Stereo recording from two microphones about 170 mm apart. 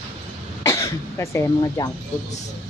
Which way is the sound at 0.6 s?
15° left (ahead or behind).